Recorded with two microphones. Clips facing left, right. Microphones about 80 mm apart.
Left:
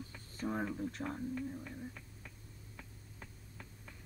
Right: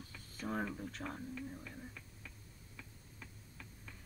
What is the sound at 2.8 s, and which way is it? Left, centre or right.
Tick-tock, left.